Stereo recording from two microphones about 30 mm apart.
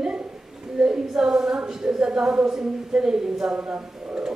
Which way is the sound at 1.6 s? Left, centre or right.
Right.